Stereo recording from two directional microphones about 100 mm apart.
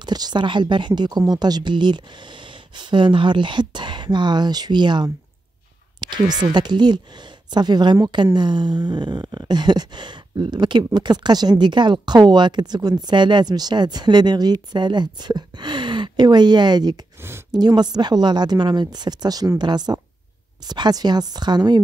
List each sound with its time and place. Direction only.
0.0 s speech: 45° right (ahead or behind)
17.2 s speech: 25° right (ahead or behind)
17.5 s speech: 45° right (ahead or behind)